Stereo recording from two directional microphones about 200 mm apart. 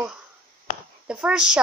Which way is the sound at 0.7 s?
45° left (ahead or behind).